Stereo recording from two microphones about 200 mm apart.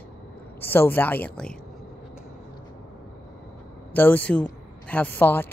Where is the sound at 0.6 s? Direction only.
10° left (ahead or behind).